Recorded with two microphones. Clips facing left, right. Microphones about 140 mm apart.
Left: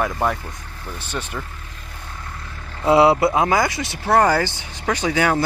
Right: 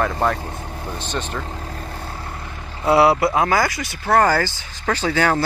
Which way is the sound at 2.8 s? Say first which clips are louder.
Left 1 dB; 20° left (ahead or behind).